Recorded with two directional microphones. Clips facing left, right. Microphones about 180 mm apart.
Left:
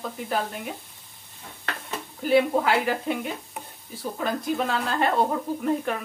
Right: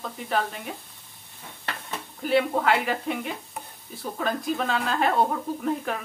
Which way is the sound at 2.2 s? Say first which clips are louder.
Left 3 dB; 5° left (ahead or behind).